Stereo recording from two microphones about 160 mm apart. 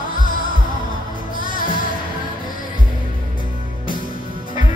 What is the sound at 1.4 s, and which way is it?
Music, 60° left (ahead or behind).